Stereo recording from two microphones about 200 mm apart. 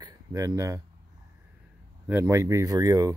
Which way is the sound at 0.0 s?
15° right (ahead or behind).